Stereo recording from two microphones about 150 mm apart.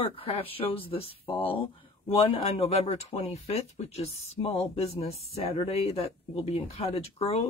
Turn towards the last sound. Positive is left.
turn(degrees=45)  # may be behind; listen again after turning